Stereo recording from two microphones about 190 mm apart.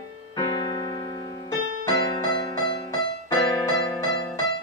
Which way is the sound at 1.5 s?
20° left (ahead or behind).